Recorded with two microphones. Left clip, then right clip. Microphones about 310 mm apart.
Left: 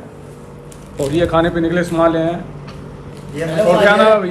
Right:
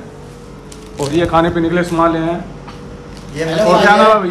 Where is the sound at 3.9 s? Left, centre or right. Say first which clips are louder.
Right 3 dB; centre.